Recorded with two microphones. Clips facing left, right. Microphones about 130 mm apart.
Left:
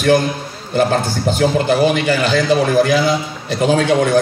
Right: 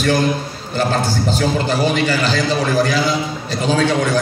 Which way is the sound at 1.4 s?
55° left (ahead or behind).